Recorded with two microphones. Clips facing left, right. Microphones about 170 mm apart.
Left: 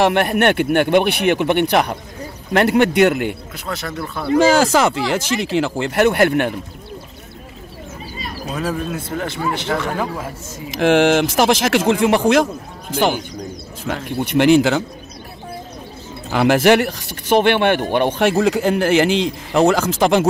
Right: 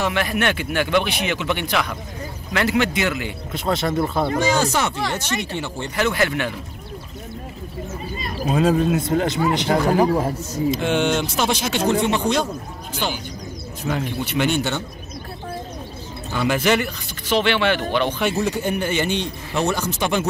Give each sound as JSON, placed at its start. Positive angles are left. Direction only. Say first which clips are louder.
{"t": 0.0, "sound": "speech", "louder": "left 7 dB", "side_deg": 60}
{"t": 3.5, "sound": "speech", "louder": "right 6 dB", "side_deg": -25}
{"t": 4.4, "sound": "a man's voice", "louder": "left 9 dB", "side_deg": 90}
{"t": 8.5, "sound": "speech", "louder": "right 6 dB", "side_deg": -25}
{"t": 9.7, "sound": "speech", "louder": "right 4 dB", "side_deg": -35}
{"t": 10.8, "sound": "a man's voice", "louder": "left 12 dB", "side_deg": 85}
{"t": 13.8, "sound": "speech", "louder": "left 1 dB", "side_deg": 70}
{"t": 16.3, "sound": "speech", "louder": "left 6 dB", "side_deg": 75}
{"t": 18.2, "sound": "a man's voice", "louder": "left 6 dB", "side_deg": 85}